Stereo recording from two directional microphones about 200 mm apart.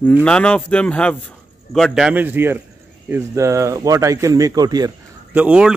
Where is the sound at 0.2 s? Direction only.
5° left (ahead or behind); by 5.4 s 20° right (ahead or behind).